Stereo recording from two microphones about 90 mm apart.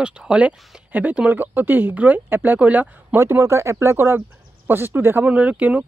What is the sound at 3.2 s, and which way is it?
Speech, 30° right (ahead or behind).